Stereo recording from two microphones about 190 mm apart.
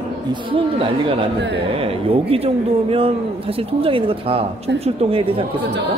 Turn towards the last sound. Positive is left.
turn(degrees=-30)  # may be behind; listen again after turning